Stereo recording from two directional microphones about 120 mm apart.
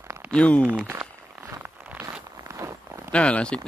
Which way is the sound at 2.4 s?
25° right (ahead or behind).